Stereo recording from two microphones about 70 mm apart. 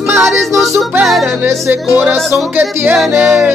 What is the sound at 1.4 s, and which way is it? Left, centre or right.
Speech, right.